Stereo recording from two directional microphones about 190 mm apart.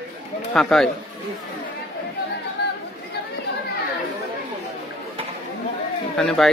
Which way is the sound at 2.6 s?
60° left (ahead or behind).